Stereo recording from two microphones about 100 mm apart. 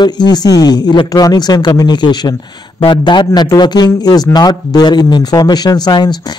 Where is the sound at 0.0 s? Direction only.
45° left (ahead or behind).